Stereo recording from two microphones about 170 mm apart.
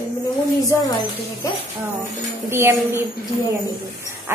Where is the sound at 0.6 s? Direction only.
20° left (ahead or behind).